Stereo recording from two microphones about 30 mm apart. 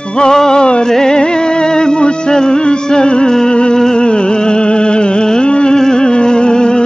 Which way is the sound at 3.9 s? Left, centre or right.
Left.